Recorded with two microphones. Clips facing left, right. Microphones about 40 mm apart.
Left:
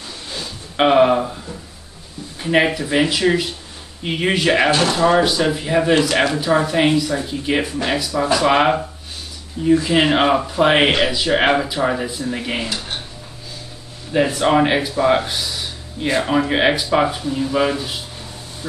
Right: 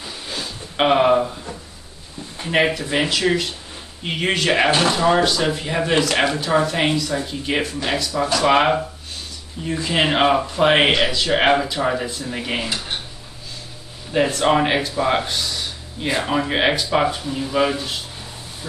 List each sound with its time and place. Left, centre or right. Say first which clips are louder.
0.3 s a sound: right 1 dB; centre
2.4 s speech: left 2 dB; centre
4.6 s speech: left 1 dB; centre
4.9 s speech: left 2 dB; centre
14.1 s speech: left 2 dB; centre